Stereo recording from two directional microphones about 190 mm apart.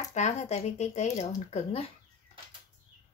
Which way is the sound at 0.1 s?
35° left (ahead or behind).